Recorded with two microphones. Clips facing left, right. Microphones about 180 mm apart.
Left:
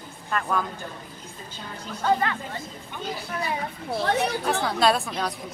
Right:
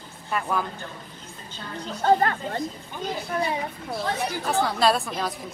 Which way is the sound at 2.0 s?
45° right (ahead or behind).